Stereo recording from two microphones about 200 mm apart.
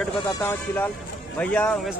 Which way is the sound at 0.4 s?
10° left (ahead or behind).